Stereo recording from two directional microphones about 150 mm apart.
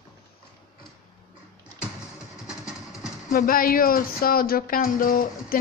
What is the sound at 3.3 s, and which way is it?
Speech, 70° left (ahead or behind).